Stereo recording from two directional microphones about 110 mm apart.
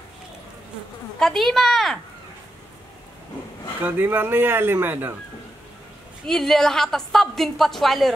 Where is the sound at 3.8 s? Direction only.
20° right (ahead or behind).